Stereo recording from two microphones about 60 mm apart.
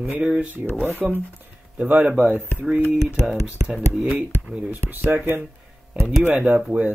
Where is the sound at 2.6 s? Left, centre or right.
Centre.